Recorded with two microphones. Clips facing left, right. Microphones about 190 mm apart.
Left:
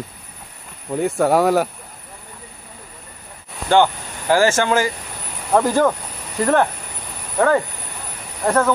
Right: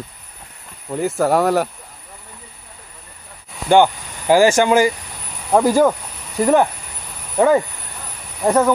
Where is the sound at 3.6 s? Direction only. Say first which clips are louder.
Right 2 dB; 15° right (ahead or behind).